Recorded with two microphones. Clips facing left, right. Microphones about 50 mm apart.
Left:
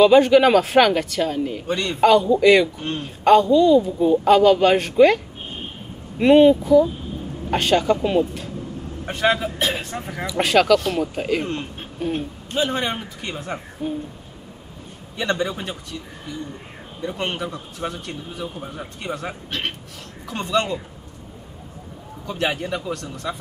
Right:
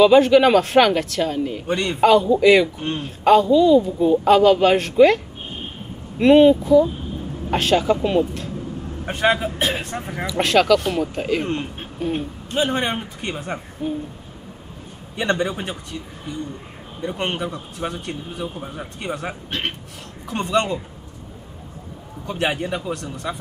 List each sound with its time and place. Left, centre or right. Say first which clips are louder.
0.0 s speech: even; centre
9.1 s speech: right 1 dB; centre
10.2 s speech: even; centre
11.4 s speech: right 2 dB; centre
12.5 s speech: right 1 dB; centre
15.1 s speech: right 2 dB; centre
17.0 s speech: right 1 dB; centre
20.5 s speech: right 1 dB; centre
22.3 s speech: right 1 dB; centre